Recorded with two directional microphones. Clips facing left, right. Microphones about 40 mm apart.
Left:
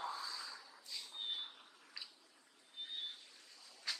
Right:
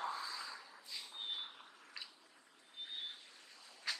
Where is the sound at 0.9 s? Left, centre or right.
Centre.